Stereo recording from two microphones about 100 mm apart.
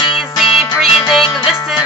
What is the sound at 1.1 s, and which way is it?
Music, centre (ahead or behind).